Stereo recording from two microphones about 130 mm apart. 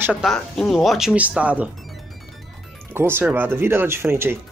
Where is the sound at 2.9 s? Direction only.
15° right (ahead or behind).